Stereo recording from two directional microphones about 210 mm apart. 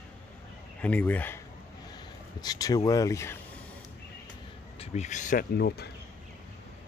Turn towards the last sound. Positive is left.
turn(degrees=50)  # may be behind; listen again after turning